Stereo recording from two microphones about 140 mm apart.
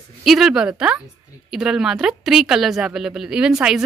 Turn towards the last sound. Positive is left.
turn(degrees=-5)  # may be behind; listen again after turning